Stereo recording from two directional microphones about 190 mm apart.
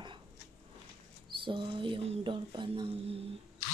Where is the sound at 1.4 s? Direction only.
25° right (ahead or behind).